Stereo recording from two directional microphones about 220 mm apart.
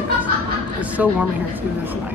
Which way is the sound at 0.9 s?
5° right (ahead or behind).